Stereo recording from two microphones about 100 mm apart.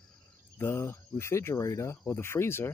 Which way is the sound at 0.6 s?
30° left (ahead or behind).